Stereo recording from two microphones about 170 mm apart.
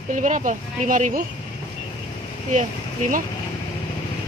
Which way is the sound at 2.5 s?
50° right (ahead or behind).